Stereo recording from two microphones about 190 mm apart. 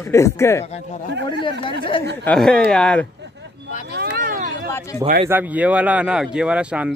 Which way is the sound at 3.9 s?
55° right (ahead or behind).